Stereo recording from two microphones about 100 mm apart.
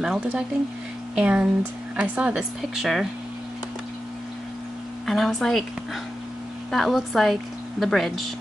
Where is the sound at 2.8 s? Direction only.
Centre (ahead or behind).